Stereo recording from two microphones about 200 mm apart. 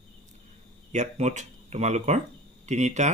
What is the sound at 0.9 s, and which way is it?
Speech, 35° right (ahead or behind).